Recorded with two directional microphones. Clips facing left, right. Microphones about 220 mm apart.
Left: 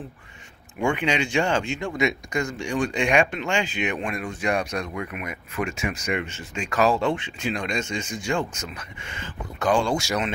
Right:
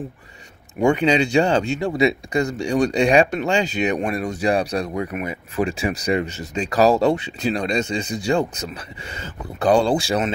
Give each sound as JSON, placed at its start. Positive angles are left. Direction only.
{"t": 0.7, "sound": "speech", "side_deg": -40}